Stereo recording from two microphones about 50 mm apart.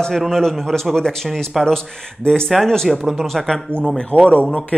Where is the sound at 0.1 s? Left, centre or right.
Centre.